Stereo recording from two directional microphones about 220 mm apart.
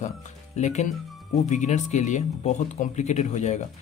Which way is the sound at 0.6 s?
30° left (ahead or behind).